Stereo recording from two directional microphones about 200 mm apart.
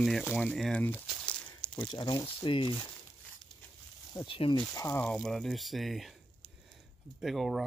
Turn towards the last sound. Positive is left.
turn(degrees=0)  # may be behind; listen again after turning